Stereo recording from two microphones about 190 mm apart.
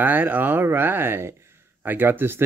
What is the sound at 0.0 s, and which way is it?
Speech, 10° right (ahead or behind).